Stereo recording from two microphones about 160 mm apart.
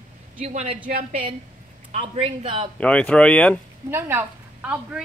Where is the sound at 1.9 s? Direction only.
40° right (ahead or behind).